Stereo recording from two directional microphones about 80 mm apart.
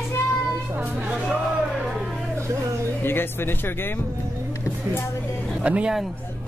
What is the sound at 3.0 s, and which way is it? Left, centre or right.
Speech, left.